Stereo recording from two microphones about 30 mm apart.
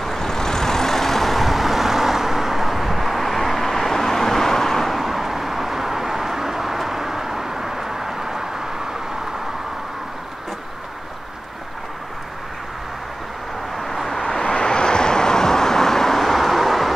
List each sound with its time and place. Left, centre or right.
0.0 s vehicle: centre
4.9 s vehicle: centre
13.7 s vehicle: centre
14.4 s vehicle: left; by 16.9 s centre